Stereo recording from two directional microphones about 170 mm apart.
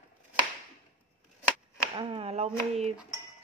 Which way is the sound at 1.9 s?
35° right (ahead or behind).